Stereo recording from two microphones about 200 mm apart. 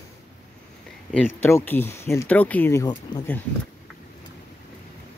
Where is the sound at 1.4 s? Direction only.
10° left (ahead or behind).